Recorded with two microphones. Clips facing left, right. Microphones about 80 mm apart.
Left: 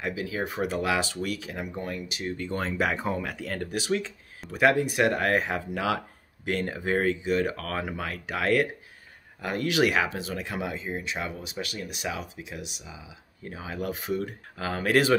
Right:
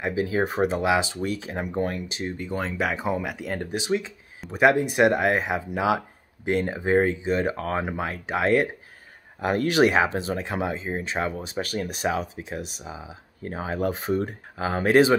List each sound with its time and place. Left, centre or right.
0.0 s speech: right
0.7 s speech: right
2.3 s speech: centre
2.6 s speech: centre; by 8.6 s right
9.5 s speech: right
14.6 s speech: right